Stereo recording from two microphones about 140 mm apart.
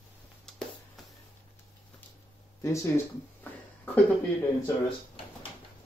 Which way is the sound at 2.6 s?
20° left (ahead or behind).